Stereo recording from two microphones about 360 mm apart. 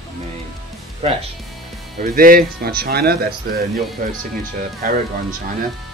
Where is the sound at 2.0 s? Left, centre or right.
Right.